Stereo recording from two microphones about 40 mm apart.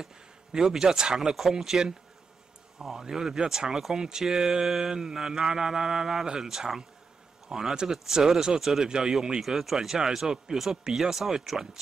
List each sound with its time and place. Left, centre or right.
0.0 s speech: centre
9.4 s speech: centre